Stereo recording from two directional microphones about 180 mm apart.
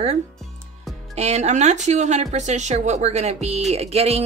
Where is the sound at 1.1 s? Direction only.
40° right (ahead or behind).